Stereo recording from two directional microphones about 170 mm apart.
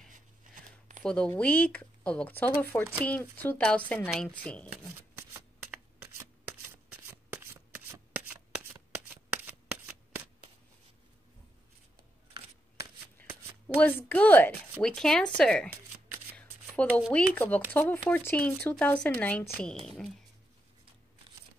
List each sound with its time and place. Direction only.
0.4 s a sound: 50° right (ahead or behind)
1.0 s speech: 5° left (ahead or behind)
5.1 s shuffling cards: 15° right (ahead or behind)
13.2 s shuffling cards: 10° left (ahead or behind)
13.7 s speech: 10° left (ahead or behind)
16.3 s shuffling cards: 10° left (ahead or behind)
17.1 s speech: 10° left (ahead or behind)